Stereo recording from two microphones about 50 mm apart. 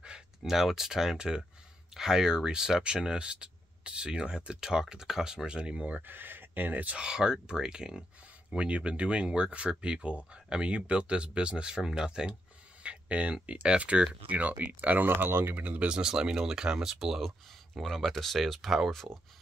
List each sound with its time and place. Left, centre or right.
0.0 s a sound: centre
0.5 s speech: centre; by 6.0 s right
6.0 s speech: right
7.0 s speech: centre
14.7 s speech: right
15.5 s speech: right
15.9 s speech: centre